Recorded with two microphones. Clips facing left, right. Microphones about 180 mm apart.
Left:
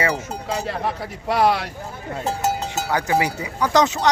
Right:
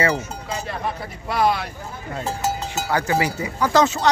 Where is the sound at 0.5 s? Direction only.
80° left.